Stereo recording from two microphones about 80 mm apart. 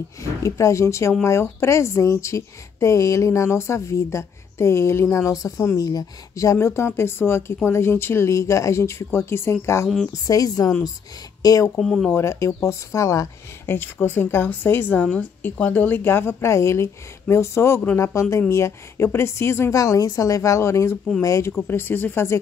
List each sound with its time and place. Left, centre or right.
0.2 s a woman's voice: left
10.1 s speech: left
11.8 s speech: centre
12.1 s a woman's voice: left
13.7 s a woman's voice: left
19.7 s a woman's voice: left
21.6 s speech: left